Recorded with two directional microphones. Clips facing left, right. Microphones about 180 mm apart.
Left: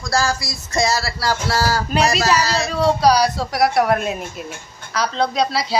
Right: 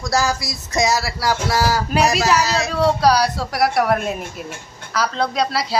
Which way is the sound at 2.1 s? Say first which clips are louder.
Even; 5° right (ahead or behind).